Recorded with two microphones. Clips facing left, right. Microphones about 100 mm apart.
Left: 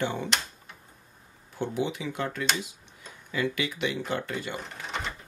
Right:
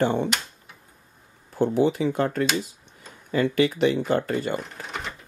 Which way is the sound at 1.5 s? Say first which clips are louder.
Right 9 dB; 40° right (ahead or behind).